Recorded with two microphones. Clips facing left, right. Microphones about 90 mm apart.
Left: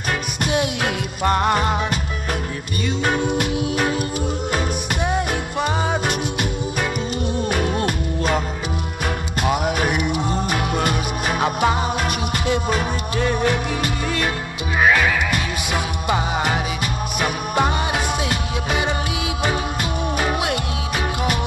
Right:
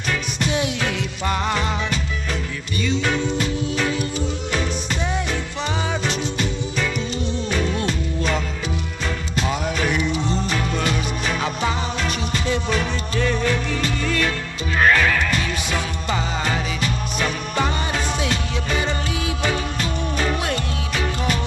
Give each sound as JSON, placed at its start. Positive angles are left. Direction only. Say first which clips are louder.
{"t": 0.1, "sound": "music", "louder": "left 1 dB", "side_deg": 55}
{"t": 2.8, "sound": "music", "louder": "left 1 dB", "side_deg": 45}
{"t": 13.1, "sound": "music", "louder": "left 1 dB", "side_deg": 15}